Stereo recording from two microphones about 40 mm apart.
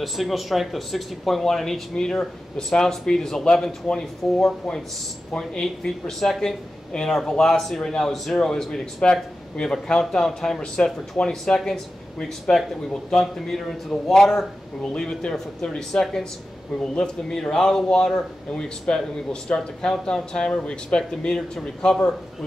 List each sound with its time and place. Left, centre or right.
0.0 s speech: centre; by 21.4 s left
21.4 s speech: centre